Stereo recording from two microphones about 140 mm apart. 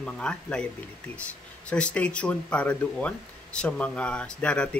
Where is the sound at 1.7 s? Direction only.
10° left (ahead or behind).